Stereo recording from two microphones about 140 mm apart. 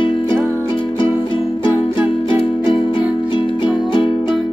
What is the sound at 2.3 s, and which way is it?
Music, 40° left (ahead or behind).